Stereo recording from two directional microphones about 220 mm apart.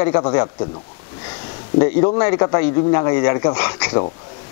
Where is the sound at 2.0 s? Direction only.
15° left (ahead or behind).